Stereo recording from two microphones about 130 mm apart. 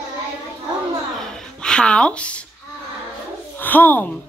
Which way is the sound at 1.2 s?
5° left (ahead or behind).